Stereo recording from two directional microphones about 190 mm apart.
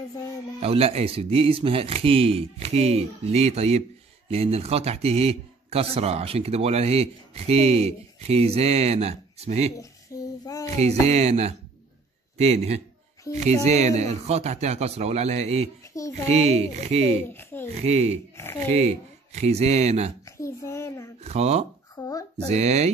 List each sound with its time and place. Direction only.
0.6 s speech: 30° right (ahead or behind)
9.8 s child singing: 20° left (ahead or behind)
10.7 s speech: 35° right (ahead or behind)
15.9 s a child's voice: 15° left (ahead or behind)
16.3 s speech: 35° right (ahead or behind)
17.3 s speech: 10° left (ahead or behind)
17.7 s speech: 35° right (ahead or behind)
20.3 s a child's voice: 15° left (ahead or behind)
21.2 s speech: 35° right (ahead or behind)
21.9 s a sound: 20° left (ahead or behind)
22.5 s speech: 35° right (ahead or behind)